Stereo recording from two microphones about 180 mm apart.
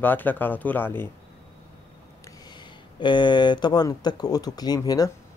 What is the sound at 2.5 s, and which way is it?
Speech, 25° left (ahead or behind).